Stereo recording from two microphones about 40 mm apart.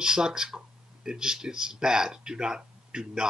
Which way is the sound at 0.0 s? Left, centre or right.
Centre.